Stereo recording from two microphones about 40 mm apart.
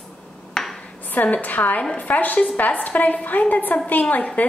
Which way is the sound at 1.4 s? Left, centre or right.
Left.